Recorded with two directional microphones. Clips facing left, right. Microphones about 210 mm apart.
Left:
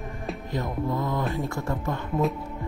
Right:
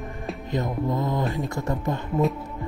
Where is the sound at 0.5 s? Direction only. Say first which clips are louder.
Right 3 dB; 20° right (ahead or behind).